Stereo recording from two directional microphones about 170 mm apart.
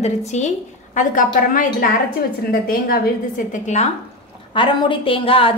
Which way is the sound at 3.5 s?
45° left (ahead or behind).